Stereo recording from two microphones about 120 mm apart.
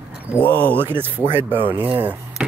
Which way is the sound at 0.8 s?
20° right (ahead or behind).